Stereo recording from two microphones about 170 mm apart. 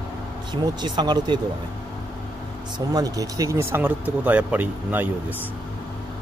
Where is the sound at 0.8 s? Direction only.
25° right (ahead or behind).